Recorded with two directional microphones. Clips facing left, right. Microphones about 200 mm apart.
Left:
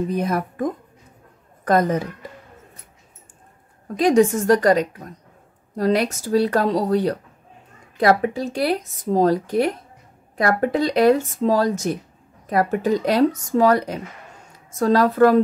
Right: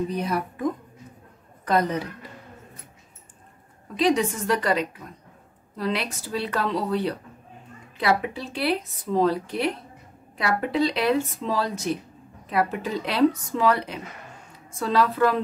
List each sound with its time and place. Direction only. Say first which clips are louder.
0.1 s a woman's voice: left 4 dB; 45° left (ahead or behind)
3.9 s speech: left 6 dB; 45° left (ahead or behind)